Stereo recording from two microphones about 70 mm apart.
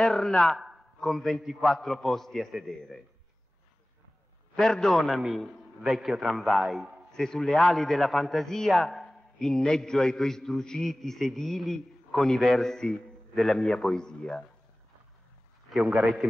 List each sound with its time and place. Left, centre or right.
0.0 s a man's voice: centre
4.6 s a man's voice: centre